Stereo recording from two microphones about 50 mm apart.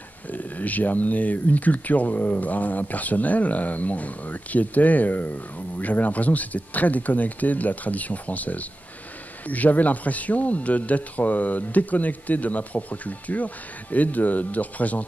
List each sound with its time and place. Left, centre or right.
0.3 s speech: left